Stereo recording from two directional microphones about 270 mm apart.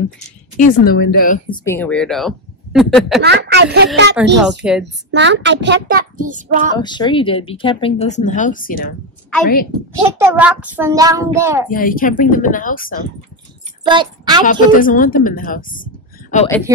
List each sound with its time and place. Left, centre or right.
0.6 s a woman's voice: left
1.5 s a woman's voice: centre
3.2 s a child's voice: right
4.6 s a woman's voice: centre
5.1 s a child's voice: right
6.8 s a woman's voice: centre; by 9.7 s left
9.9 s a child's voice: centre
11.7 s a woman's voice: left
13.8 s speech: centre
14.4 s a woman's voice: left